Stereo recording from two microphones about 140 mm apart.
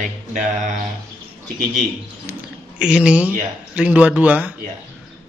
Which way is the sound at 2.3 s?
5° right (ahead or behind).